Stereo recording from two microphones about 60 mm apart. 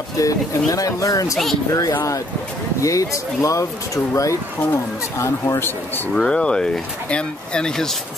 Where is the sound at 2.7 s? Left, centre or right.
Left.